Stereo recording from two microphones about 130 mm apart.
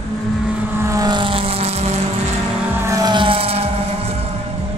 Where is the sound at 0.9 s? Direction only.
30° right (ahead or behind); by 1.7 s 50° right (ahead or behind).